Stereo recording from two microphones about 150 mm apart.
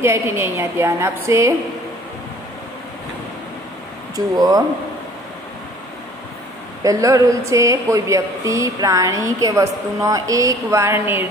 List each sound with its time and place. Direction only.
0.0 s a woman's voice: 20° right (ahead or behind)
4.4 s speech: 25° right (ahead or behind)
6.8 s speech: 20° right (ahead or behind)